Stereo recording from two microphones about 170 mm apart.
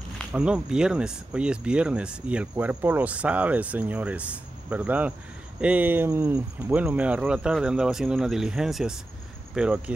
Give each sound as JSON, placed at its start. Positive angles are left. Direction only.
{"t": 0.3, "sound": "speech", "side_deg": -5}